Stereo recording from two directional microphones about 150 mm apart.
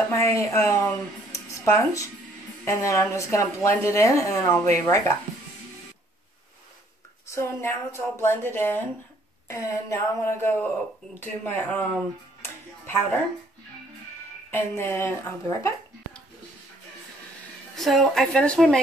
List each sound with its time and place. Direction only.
0.4 s a woman's voice: 20° left (ahead or behind)
1.3 s a sound: 20° left (ahead or behind)
2.6 s a woman's voice: 20° left (ahead or behind)
7.2 s a woman's voice: 15° left (ahead or behind)
12.4 s music: 15° left (ahead or behind)
14.5 s a woman's voice: 15° left (ahead or behind)
17.7 s a woman's voice: centre (ahead or behind)